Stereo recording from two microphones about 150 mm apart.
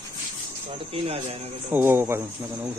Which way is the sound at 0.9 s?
40° right (ahead or behind).